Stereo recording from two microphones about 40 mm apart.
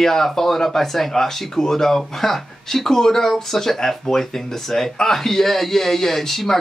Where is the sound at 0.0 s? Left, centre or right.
Centre.